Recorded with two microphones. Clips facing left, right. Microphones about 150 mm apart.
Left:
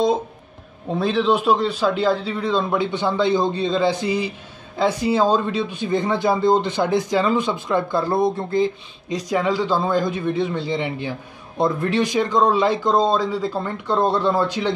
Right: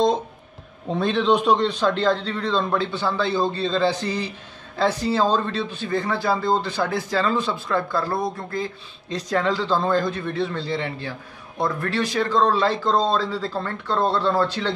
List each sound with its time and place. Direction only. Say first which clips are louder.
0.8 s speech: left 1 dB; 5° left (ahead or behind)